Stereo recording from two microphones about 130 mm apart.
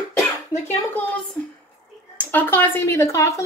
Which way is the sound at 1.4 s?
15° left (ahead or behind).